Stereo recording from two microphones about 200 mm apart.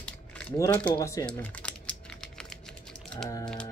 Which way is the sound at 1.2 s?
5° left (ahead or behind).